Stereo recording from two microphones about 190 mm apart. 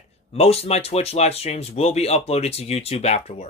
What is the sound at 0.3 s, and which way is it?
Speech, 30° left (ahead or behind).